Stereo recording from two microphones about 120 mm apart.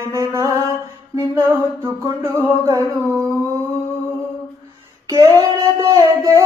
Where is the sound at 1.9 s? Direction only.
20° right (ahead or behind).